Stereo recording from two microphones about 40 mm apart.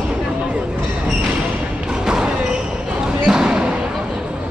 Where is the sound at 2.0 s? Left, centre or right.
Centre.